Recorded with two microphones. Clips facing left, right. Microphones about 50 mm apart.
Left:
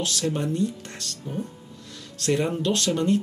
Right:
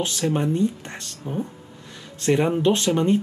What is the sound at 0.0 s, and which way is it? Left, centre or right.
Speech, right.